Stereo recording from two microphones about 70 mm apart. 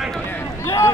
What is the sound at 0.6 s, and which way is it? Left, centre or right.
Speech, left.